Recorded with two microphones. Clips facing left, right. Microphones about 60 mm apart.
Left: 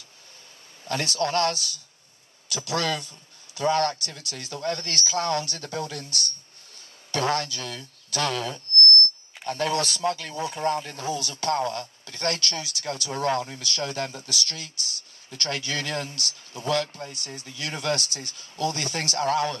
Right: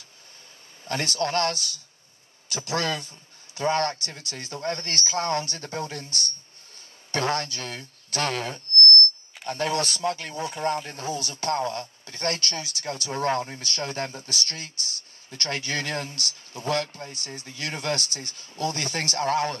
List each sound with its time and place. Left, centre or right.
0.8 s speech: right